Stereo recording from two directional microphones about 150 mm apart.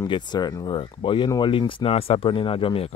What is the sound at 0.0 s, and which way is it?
Speech, 30° left (ahead or behind).